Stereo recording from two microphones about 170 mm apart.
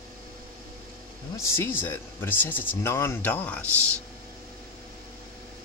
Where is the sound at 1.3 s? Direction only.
15° left (ahead or behind).